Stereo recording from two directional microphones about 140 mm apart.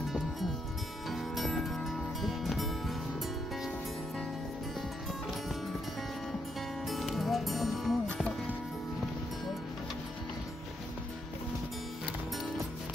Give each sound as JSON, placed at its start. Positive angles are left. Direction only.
{"t": 1.1, "sound": "music", "side_deg": 0}
{"t": 6.9, "sound": "music", "side_deg": 0}